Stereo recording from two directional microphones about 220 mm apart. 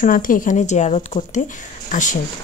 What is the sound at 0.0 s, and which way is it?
Speech, 35° left (ahead or behind).